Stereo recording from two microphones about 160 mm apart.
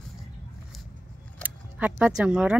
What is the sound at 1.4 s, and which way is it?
Speech, 10° right (ahead or behind).